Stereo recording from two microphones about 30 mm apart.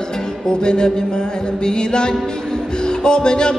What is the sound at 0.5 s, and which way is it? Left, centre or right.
Music, left.